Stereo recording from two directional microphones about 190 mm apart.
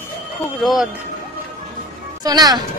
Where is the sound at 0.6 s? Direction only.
Centre (ahead or behind).